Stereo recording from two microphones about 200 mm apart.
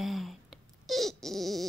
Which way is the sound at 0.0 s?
Centre (ahead or behind).